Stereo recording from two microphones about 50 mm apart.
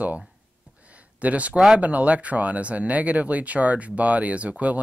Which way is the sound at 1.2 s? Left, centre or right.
Right.